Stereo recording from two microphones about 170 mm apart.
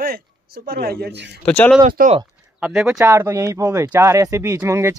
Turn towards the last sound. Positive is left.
turn(degrees=-15)  # may be behind; listen again after turning